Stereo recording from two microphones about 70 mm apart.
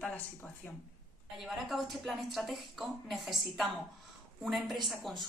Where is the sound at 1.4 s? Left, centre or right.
Centre.